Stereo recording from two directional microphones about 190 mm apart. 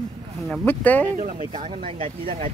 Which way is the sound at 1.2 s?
35° right (ahead or behind).